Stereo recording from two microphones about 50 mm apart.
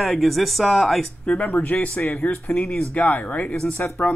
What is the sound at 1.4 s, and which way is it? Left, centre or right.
Speech, left.